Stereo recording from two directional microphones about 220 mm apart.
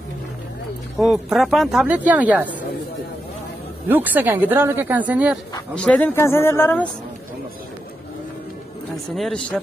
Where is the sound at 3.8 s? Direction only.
10° right (ahead or behind).